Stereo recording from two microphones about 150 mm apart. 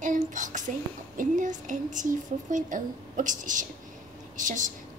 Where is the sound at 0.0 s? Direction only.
55° right (ahead or behind).